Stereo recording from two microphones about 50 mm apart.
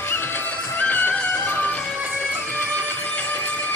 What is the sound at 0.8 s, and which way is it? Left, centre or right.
Music, left.